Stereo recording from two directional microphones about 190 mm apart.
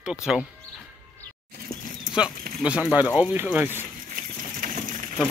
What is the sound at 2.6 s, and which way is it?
Speech, 5° right (ahead or behind).